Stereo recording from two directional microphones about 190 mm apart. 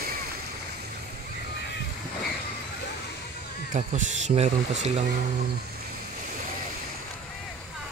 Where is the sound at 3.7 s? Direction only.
40° right (ahead or behind).